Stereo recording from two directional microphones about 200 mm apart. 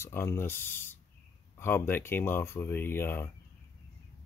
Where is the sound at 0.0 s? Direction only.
10° left (ahead or behind).